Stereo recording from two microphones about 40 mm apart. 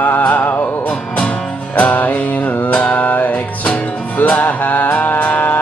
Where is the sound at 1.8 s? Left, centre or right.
Left.